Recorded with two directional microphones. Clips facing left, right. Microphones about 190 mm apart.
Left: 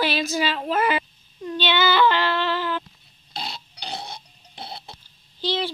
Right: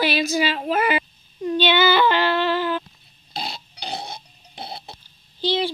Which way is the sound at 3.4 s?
10° right (ahead or behind).